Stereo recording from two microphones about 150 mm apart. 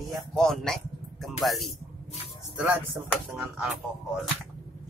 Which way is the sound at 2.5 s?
10° right (ahead or behind).